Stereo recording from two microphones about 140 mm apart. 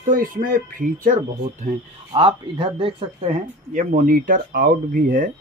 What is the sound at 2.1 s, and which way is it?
Speech, 40° right (ahead or behind).